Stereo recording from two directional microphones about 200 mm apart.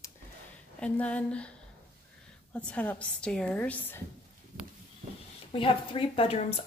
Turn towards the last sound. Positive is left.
turn(degrees=30)  # may be behind; listen again after turning